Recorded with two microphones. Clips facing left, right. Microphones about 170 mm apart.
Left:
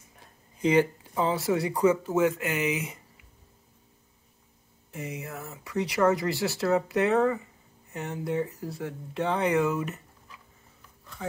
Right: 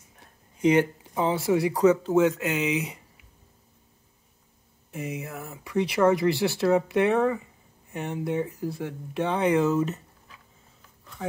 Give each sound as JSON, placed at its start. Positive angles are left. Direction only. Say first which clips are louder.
{"t": 0.6, "sound": "speech", "louder": "right 2 dB", "side_deg": -15}
{"t": 4.9, "sound": "speech", "louder": "right 3 dB", "side_deg": -20}